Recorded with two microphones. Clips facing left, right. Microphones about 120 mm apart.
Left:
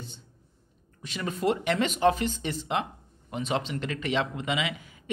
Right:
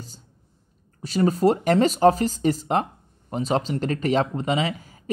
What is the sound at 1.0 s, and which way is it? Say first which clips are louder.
Speech: right 8 dB; 40° right (ahead or behind).